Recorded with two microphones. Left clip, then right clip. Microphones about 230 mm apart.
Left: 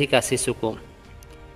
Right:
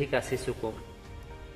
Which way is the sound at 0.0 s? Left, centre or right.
Left.